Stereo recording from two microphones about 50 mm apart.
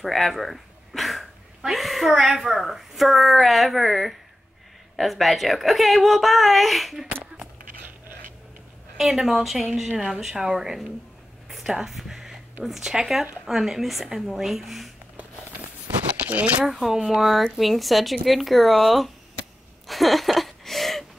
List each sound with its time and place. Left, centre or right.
0.0 s a woman's voice: centre
8.9 s a woman's voice: centre
11.4 s a sound: centre
12.6 s a woman's voice: centre
16.3 s speech: right
16.6 s a woman's voice: centre
19.9 s a sound: centre